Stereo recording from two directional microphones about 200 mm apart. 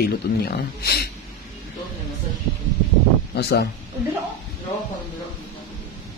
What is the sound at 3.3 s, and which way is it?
Speech, 55° left (ahead or behind).